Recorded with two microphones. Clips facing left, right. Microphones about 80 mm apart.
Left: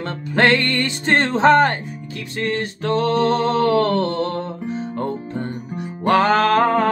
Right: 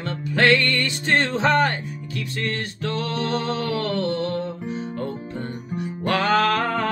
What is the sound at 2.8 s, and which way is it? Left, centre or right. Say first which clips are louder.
Music: left 9 dB; left.